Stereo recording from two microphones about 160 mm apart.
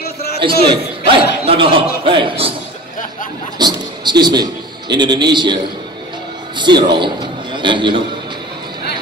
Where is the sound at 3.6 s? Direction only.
25° right (ahead or behind).